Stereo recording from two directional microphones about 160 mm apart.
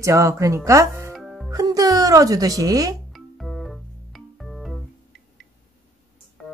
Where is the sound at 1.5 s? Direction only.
20° right (ahead or behind).